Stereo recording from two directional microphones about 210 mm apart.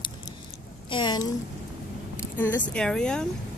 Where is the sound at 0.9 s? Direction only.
20° left (ahead or behind).